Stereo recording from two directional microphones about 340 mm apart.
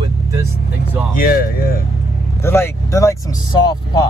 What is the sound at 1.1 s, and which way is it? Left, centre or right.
Speech, left.